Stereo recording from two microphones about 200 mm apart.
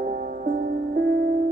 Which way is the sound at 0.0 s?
45° right (ahead or behind).